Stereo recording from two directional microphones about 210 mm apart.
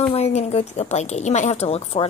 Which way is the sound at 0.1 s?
30° left (ahead or behind).